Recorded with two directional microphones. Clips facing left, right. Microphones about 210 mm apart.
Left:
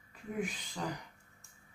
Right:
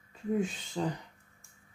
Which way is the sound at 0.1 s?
25° right (ahead or behind).